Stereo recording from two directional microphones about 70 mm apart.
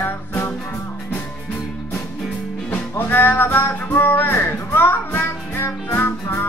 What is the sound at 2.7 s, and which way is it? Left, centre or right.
Music, left.